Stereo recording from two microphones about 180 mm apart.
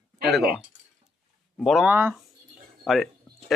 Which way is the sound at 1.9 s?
10° right (ahead or behind).